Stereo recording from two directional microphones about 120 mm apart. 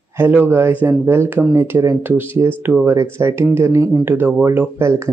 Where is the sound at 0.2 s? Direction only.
15° right (ahead or behind).